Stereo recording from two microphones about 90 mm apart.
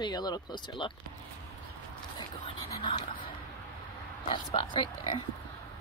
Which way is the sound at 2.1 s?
65° left (ahead or behind).